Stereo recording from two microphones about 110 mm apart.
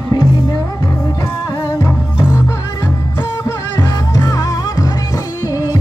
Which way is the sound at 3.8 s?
35° left (ahead or behind).